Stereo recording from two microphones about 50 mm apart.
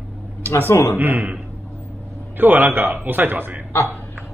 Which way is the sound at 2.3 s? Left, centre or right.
Right.